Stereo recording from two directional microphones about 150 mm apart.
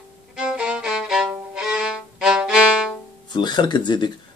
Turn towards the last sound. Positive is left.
turn(degrees=30)  # may be behind; listen again after turning